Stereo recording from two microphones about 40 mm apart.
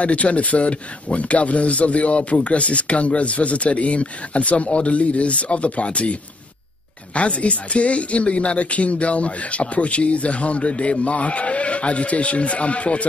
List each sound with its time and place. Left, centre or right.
0.0 s speech: left
7.2 s speech: left